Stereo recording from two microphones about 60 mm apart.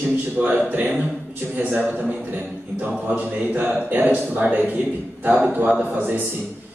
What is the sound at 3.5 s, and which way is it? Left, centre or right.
Speech, right.